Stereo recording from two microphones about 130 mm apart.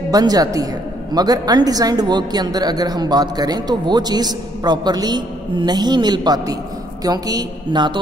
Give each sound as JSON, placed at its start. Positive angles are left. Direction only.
{"t": 0.1, "sound": "a woman's voice", "side_deg": -30}